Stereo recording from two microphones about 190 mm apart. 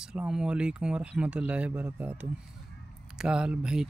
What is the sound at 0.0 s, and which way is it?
Speech, 5° right (ahead or behind).